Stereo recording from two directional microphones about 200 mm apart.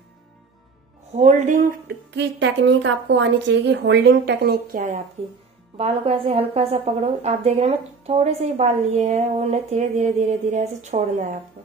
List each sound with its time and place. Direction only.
1.1 s a woman's voice: 35° right (ahead or behind)
2.1 s a woman's voice: 60° right (ahead or behind)
5.8 s a woman's voice: 30° right (ahead or behind)